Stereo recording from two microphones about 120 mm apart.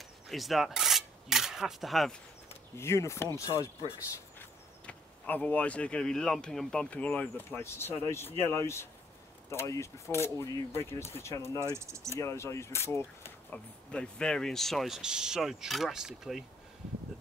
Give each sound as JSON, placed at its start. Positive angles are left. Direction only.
{"t": 0.0, "sound": "rub", "side_deg": 0}
{"t": 2.8, "sound": "speech", "side_deg": 25}
{"t": 4.4, "sound": "speech", "side_deg": 15}
{"t": 11.6, "sound": "speech", "side_deg": -25}
{"t": 12.2, "sound": "speech", "side_deg": 25}
{"t": 13.5, "sound": "speech", "side_deg": 10}